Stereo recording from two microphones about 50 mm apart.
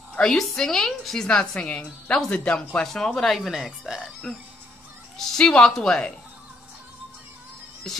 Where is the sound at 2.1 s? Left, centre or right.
Centre.